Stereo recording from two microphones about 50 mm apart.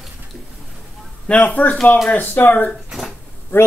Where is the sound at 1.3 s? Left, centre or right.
Left.